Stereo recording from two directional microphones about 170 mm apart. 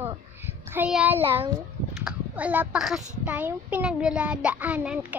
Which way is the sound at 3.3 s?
10° right (ahead or behind).